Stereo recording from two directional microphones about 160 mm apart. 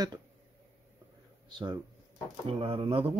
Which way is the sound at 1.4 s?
30° right (ahead or behind).